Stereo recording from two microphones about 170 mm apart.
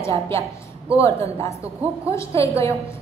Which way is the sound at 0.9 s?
15° left (ahead or behind).